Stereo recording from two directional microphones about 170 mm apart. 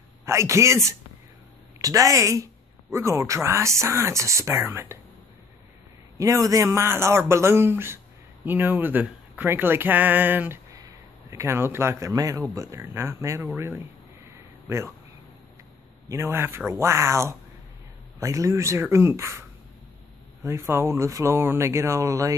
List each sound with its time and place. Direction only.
0.2 s speech: 15° right (ahead or behind)
6.1 s speech: 20° right (ahead or behind)
16.1 s speech: 15° right (ahead or behind)
20.4 s speech: 15° right (ahead or behind)